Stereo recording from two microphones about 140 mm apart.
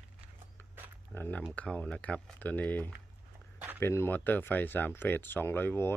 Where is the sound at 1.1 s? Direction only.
15° left (ahead or behind).